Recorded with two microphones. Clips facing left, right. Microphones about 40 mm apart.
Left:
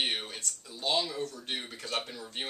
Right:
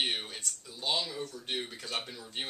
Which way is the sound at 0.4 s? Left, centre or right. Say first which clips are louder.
Left 2 dB; centre.